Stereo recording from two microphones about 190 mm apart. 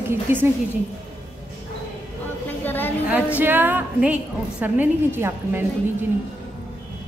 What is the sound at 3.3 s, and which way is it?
A woman's voice, 10° right (ahead or behind).